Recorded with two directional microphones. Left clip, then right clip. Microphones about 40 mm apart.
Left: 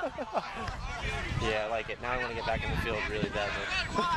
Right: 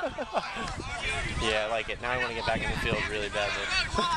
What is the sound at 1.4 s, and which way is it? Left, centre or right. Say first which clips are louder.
Speech: right 3 dB; right.